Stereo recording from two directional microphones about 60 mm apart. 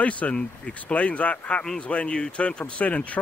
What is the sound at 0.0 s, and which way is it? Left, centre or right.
Speech, left.